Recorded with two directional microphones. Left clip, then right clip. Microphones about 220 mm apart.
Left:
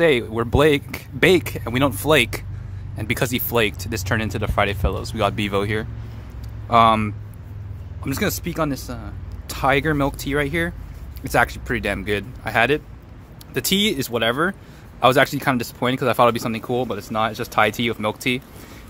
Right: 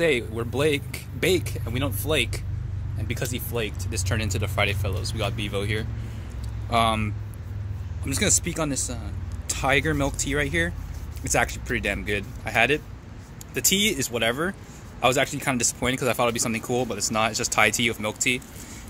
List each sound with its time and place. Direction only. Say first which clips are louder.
0.0 s speech: left 6 dB; 20° left (ahead or behind)